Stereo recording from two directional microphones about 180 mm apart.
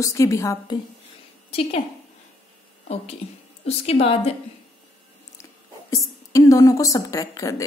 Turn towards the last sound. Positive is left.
turn(degrees=20)  # may be behind; listen again after turning